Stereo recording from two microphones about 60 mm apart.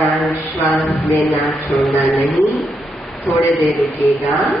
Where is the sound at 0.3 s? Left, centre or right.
Left.